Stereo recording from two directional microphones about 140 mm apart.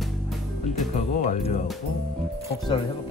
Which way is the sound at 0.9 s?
55° left (ahead or behind).